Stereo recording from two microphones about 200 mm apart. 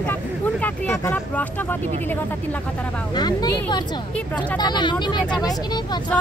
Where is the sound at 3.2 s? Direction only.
20° left (ahead or behind).